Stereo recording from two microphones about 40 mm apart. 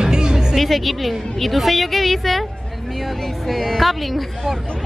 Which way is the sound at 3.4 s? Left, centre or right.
Centre.